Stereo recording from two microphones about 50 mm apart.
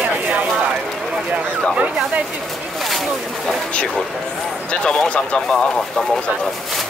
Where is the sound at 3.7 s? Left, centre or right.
Left.